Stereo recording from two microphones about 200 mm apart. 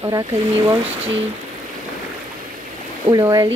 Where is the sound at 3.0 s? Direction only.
20° right (ahead or behind).